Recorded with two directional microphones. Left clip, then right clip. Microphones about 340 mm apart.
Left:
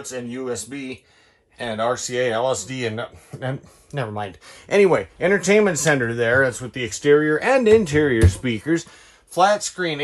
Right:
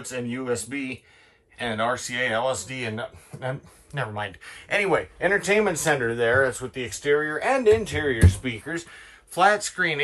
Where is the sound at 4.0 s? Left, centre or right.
Centre.